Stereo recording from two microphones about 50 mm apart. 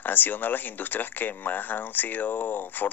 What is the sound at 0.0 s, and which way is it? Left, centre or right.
Speech, left.